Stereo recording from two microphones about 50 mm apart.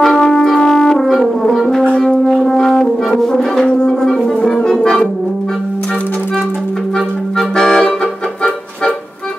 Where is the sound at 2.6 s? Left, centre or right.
Centre.